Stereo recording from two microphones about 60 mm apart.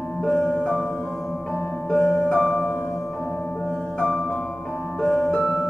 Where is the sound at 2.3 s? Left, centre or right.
Centre.